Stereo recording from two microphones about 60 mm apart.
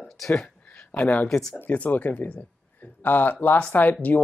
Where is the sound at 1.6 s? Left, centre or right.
Left.